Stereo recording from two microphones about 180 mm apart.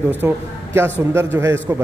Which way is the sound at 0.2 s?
10° right (ahead or behind).